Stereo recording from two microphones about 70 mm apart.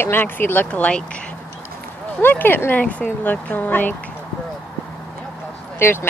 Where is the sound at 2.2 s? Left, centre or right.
Left.